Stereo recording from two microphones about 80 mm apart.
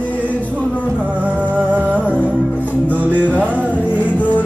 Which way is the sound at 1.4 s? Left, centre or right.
Centre.